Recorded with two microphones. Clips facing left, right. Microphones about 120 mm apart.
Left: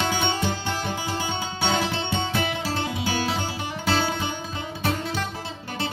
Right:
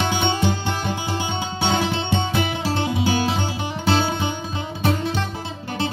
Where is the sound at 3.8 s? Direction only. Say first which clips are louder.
Right 4 dB; 25° right (ahead or behind).